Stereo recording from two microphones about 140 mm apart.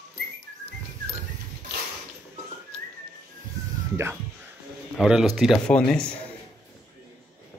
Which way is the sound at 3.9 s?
15° right (ahead or behind).